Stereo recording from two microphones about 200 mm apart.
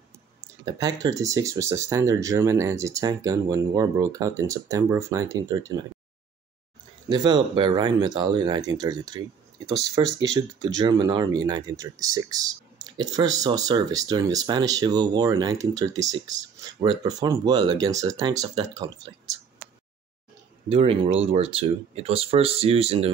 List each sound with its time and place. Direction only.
0.7 s speech: 20° right (ahead or behind)
7.1 s speech: 25° right (ahead or behind)
20.6 s speech: 30° right (ahead or behind)